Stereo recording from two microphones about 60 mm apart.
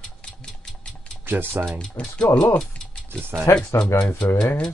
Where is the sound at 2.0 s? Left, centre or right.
Centre.